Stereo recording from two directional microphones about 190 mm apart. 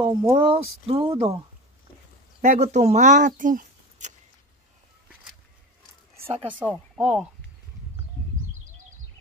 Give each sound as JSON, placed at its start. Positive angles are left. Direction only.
{"t": 0.0, "sound": "speech", "side_deg": -25}
{"t": 2.4, "sound": "speech", "side_deg": -40}
{"t": 6.1, "sound": "a sound", "side_deg": -30}
{"t": 6.6, "sound": "speech", "side_deg": -10}